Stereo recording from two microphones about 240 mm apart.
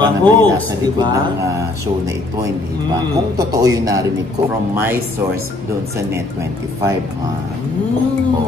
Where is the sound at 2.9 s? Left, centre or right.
Centre.